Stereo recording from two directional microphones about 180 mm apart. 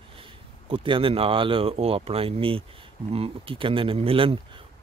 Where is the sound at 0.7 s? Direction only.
30° right (ahead or behind).